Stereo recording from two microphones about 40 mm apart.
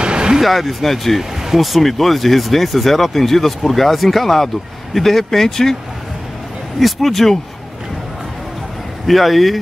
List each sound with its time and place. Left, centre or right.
0.0 s a sound: right
0.4 s speech: centre
6.8 s speech: centre
9.0 s speech: centre